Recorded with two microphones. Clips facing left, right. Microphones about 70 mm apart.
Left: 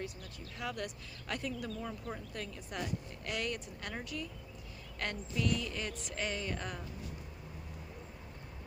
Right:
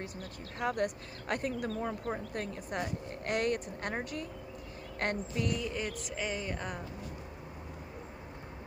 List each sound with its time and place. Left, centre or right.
0.6 s speech: right
5.6 s speech: centre